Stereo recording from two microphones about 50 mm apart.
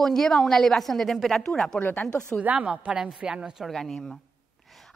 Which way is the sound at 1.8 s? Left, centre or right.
Left.